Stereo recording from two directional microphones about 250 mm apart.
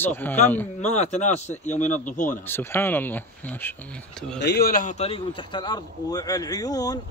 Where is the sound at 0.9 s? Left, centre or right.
Left.